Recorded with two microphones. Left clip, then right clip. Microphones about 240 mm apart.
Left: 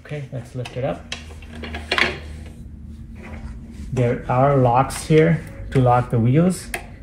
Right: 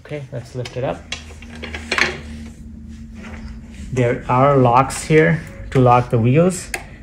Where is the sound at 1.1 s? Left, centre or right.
Centre.